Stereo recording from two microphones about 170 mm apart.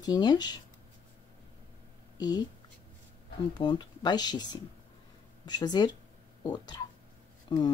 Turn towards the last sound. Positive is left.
turn(degrees=25)  # may be behind; listen again after turning